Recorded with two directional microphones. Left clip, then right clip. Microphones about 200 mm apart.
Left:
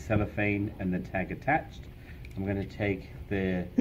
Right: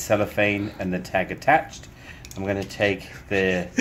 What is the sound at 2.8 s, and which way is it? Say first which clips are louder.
Speech: right 9 dB; 30° right (ahead or behind).